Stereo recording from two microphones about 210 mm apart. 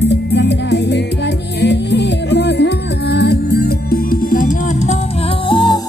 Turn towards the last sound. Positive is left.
turn(degrees=20)  # may be behind; listen again after turning